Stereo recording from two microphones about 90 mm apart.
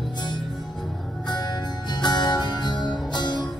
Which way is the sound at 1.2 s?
55° left (ahead or behind).